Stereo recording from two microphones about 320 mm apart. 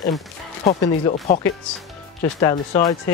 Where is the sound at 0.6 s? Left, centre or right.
Centre.